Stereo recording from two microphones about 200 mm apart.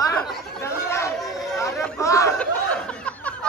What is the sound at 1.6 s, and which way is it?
Chatter, 15° left (ahead or behind).